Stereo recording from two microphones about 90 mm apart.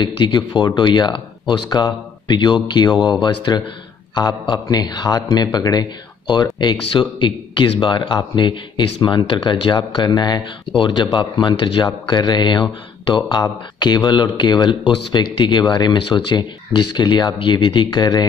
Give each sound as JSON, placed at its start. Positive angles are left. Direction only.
{"t": 0.0, "sound": "speech", "side_deg": 55}
{"t": 6.9, "sound": "speech", "side_deg": 65}
{"t": 10.8, "sound": "speech", "side_deg": 65}
{"t": 17.4, "sound": "speech", "side_deg": 65}